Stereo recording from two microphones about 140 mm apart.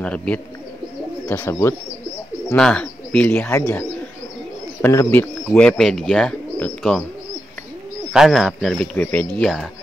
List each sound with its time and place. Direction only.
0.0 s speech: 5° left (ahead or behind)
2.5 s speech: 5° left (ahead or behind)
4.8 s speech: 15° left (ahead or behind)
8.1 s speech: centre (ahead or behind)